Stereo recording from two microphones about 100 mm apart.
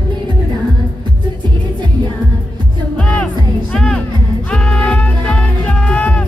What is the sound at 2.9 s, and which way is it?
Music, 15° left (ahead or behind).